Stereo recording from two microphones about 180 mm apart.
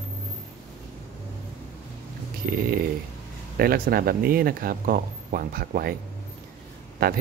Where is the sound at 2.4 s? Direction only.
55° right (ahead or behind).